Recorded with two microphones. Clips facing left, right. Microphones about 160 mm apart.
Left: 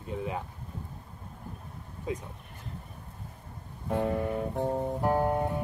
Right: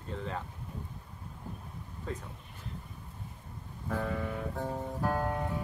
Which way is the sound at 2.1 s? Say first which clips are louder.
Left 5 dB; 15° left (ahead or behind).